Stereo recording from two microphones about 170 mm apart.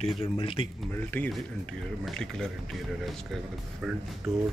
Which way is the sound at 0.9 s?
10° left (ahead or behind).